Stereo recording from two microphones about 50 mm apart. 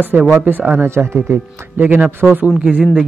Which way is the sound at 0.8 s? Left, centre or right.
Right.